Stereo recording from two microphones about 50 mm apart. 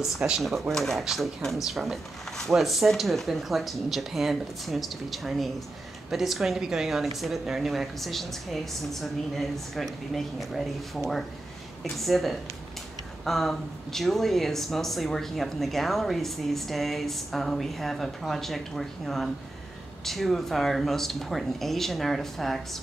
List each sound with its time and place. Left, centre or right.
0.0 s a woman's voice: centre